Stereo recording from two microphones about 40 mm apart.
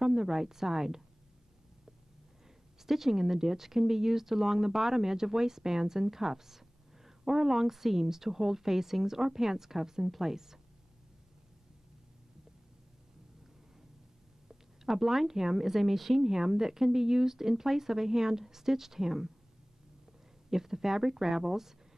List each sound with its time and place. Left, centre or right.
0.0 s a woman's voice: centre
2.9 s a woman's voice: centre
14.9 s a woman's voice: centre
20.4 s a woman's voice: centre